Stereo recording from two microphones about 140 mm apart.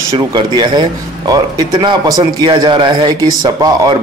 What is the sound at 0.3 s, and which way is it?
A man's voice, 30° right (ahead or behind).